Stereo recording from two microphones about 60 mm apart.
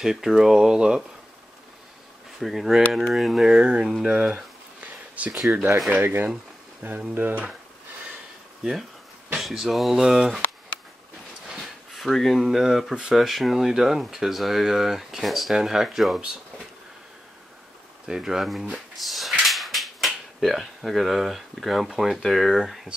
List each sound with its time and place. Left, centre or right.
0.0 s speech: centre
2.4 s speech: centre
4.7 s a sound: right
5.9 s speech: right
9.4 s speech: centre
11.4 s a sound: centre
12.4 s speech: centre
18.0 s speech: centre